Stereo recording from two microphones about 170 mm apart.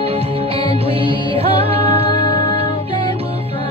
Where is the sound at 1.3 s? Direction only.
35° right (ahead or behind).